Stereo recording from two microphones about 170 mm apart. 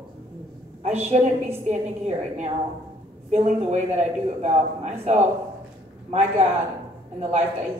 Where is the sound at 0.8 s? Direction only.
40° right (ahead or behind).